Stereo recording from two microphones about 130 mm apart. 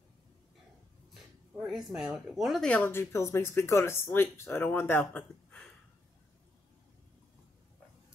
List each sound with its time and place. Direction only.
1.7 s speech: 5° right (ahead or behind)
2.7 s speech: 15° left (ahead or behind)